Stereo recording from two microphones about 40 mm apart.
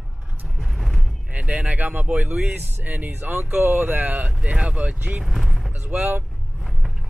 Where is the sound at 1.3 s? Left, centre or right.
Right.